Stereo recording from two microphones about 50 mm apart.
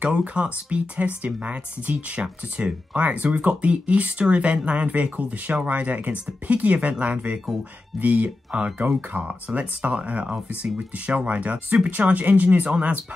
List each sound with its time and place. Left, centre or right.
0.0 s speech: right